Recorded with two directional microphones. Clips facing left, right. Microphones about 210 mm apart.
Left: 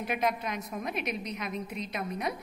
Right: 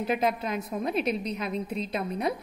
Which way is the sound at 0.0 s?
30° right (ahead or behind).